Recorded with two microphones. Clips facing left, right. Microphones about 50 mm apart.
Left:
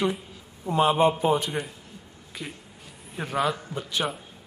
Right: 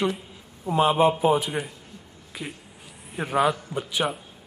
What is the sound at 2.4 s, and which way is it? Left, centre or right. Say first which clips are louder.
Speech: right 2 dB; right.